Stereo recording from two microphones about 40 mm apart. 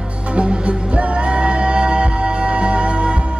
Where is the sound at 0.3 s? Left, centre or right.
Right.